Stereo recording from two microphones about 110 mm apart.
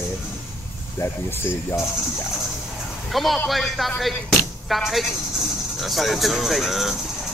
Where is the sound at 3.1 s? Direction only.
Centre (ahead or behind).